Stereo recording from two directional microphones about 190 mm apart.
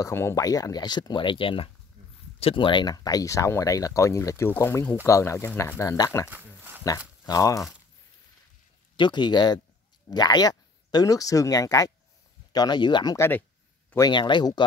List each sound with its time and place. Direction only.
0.0 s speech: 15° left (ahead or behind)
6.3 s a sound: 10° right (ahead or behind)
7.2 s speech: 15° left (ahead or behind)
8.9 s speech: 25° left (ahead or behind)